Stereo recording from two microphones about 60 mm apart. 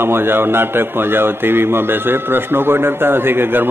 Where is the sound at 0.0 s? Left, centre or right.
Right.